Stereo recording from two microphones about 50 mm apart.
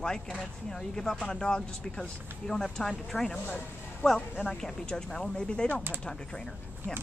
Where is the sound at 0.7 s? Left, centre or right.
Centre.